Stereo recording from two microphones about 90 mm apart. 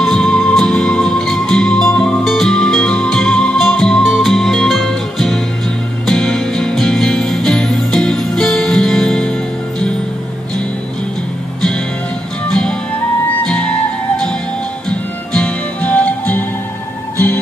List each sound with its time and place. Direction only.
0.0 s music: 5° left (ahead or behind)
12.4 s music: 5° left (ahead or behind)